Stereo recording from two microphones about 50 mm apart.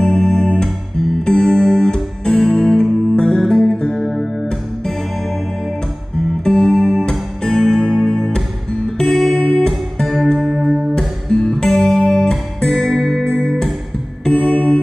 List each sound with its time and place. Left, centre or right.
0.0 s music: centre
4.1 s music: centre
6.4 s music: centre
7.1 s music: centre
9.4 s music: left
9.7 s music: centre
11.0 s guitar: centre
13.2 s music: centre
14.5 s music: left